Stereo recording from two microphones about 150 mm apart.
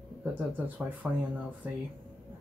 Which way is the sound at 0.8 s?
5° right (ahead or behind).